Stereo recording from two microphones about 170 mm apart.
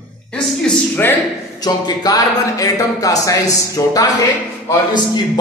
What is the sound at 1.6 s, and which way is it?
Speech, 25° left (ahead or behind).